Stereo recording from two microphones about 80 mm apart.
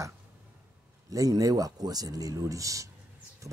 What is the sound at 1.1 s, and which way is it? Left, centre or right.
Speech, right.